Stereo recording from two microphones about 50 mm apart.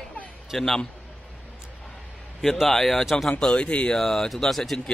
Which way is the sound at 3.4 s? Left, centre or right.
Left.